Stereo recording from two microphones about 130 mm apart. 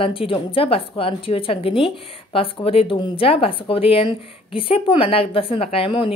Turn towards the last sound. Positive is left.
turn(degrees=45)  # may be behind; listen again after turning